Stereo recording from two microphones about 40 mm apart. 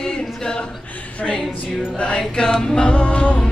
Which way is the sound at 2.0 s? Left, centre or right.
Left.